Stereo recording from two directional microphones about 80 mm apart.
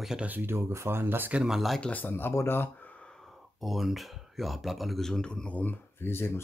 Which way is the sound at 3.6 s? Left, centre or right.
Centre.